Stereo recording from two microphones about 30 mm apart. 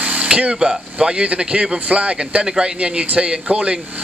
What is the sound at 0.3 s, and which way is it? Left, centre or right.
A man's voice, right.